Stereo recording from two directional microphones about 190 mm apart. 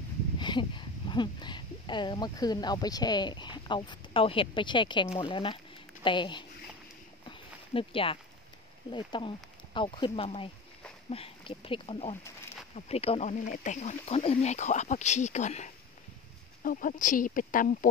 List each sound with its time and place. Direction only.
0.4 s speech: 25° left (ahead or behind)
7.2 s a sound: 30° left (ahead or behind)
8.9 s speech: 25° left (ahead or behind); by 17.7 s 45° left (ahead or behind)